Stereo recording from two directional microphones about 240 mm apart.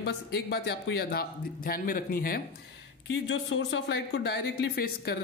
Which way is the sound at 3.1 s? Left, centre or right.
Left.